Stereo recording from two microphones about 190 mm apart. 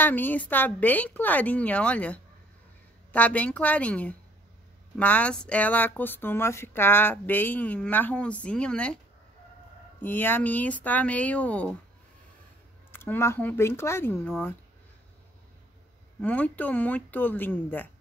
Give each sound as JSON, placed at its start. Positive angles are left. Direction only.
{"t": 0.0, "sound": "speech", "side_deg": 10}
{"t": 10.0, "sound": "speech", "side_deg": 10}
{"t": 12.9, "sound": "speech", "side_deg": 15}
{"t": 16.2, "sound": "speech", "side_deg": 10}